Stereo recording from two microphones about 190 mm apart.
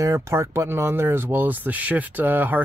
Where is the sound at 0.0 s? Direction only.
15° right (ahead or behind).